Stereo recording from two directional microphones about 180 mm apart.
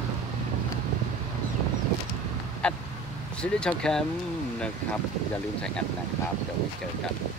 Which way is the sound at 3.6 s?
5° left (ahead or behind).